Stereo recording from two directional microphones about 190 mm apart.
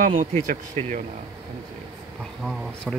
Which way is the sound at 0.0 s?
40° right (ahead or behind).